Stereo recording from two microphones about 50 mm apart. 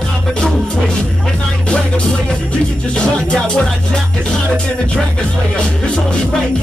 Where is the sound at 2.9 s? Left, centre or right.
Centre.